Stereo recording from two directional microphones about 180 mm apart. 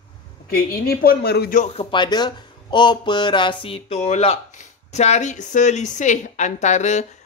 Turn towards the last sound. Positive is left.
turn(degrees=40)  # may be behind; listen again after turning